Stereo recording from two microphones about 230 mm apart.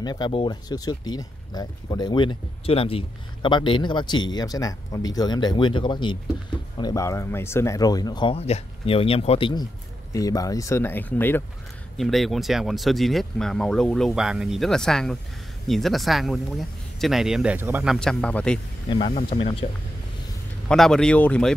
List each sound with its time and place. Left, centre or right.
0.0 s speech: centre
17.9 s speech: centre
18.9 s speech: left
20.6 s speech: centre